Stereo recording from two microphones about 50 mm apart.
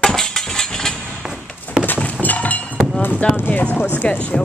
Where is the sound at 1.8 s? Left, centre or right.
Left.